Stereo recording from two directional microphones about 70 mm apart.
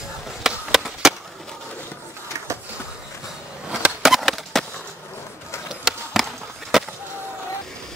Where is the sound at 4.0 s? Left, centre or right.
Centre.